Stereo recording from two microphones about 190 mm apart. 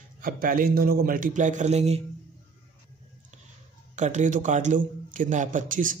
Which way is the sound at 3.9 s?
40° right (ahead or behind).